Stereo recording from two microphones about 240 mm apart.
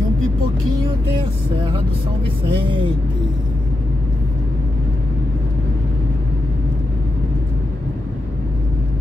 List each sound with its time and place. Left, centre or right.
2.4 s speech: right